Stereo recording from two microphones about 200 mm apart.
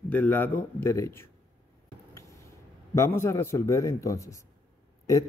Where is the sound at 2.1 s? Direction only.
15° left (ahead or behind).